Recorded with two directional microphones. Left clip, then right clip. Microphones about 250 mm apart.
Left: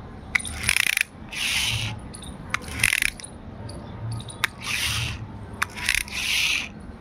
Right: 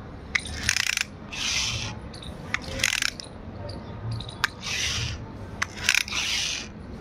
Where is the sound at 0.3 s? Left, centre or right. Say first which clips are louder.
Left 3 dB; centre.